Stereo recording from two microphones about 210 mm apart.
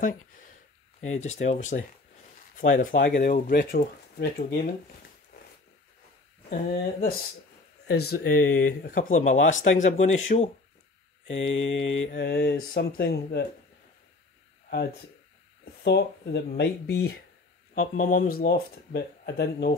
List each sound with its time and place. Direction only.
1.1 s speech: 35° left (ahead or behind)
6.5 s speech: 40° left (ahead or behind)
8.2 s speech: 70° left (ahead or behind)
8.8 s speech: 40° left (ahead or behind)
11.2 s mantra: 65° left (ahead or behind)
12.1 s speech: 50° left (ahead or behind)
15.8 s speech: 50° left (ahead or behind)
17.7 s speech: 40° left (ahead or behind)
18.4 s speech: 50° left (ahead or behind)